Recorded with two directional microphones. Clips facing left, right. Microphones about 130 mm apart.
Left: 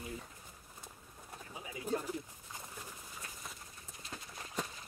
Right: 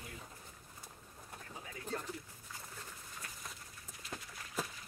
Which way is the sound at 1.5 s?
10° left (ahead or behind).